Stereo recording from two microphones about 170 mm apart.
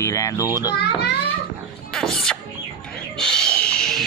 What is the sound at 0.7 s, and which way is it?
Speech, 80° left.